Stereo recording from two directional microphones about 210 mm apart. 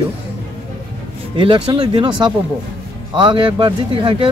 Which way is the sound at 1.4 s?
25° right (ahead or behind).